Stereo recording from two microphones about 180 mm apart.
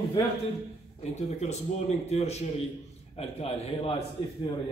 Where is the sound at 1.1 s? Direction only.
40° left (ahead or behind).